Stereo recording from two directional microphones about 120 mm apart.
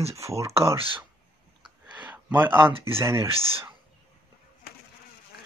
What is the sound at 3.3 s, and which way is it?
Speech, 50° right (ahead or behind).